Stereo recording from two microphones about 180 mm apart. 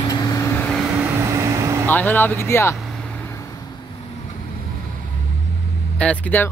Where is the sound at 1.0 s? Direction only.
15° right (ahead or behind).